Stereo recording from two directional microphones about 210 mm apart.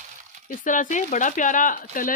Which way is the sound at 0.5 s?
40° left (ahead or behind).